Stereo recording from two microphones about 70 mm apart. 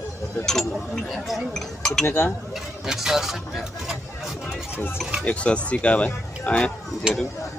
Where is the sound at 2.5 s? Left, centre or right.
Centre.